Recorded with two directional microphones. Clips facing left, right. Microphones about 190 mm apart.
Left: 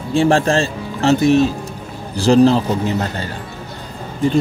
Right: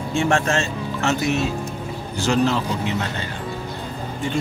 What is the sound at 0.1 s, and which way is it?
A man's voice, 35° left (ahead or behind).